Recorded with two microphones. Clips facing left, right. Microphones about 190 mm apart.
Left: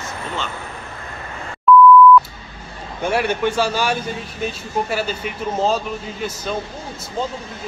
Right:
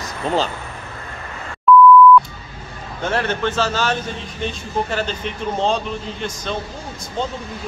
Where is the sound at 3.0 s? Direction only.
10° left (ahead or behind).